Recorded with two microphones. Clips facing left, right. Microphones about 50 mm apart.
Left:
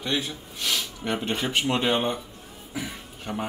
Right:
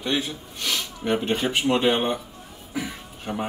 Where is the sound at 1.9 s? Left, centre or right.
Right.